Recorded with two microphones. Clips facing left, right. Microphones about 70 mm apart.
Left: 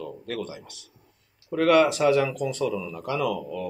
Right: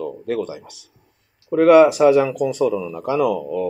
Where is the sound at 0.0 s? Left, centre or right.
Centre.